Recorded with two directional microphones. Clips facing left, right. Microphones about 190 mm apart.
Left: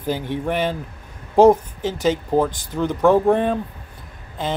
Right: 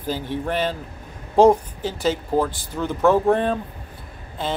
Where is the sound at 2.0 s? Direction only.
15° left (ahead or behind).